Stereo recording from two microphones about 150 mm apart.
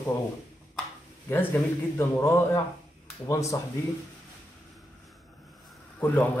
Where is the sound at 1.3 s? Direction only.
15° left (ahead or behind).